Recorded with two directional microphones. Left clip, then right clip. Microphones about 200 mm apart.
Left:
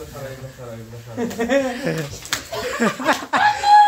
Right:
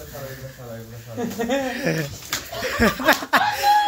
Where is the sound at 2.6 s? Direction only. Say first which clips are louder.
Right 2 dB; 10° right (ahead or behind).